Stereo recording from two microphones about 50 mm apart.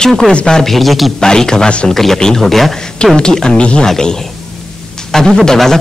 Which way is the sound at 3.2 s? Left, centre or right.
Centre.